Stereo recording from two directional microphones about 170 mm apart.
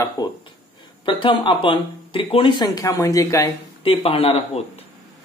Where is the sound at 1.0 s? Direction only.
30° left (ahead or behind).